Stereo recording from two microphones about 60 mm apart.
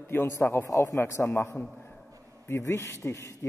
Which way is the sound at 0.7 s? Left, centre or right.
Left.